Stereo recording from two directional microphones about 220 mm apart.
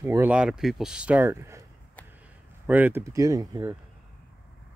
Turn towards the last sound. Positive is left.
turn(degrees=-15)  # may be behind; listen again after turning